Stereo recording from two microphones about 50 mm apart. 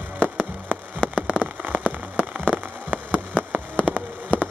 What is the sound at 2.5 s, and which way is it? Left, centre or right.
Rain on surface, right.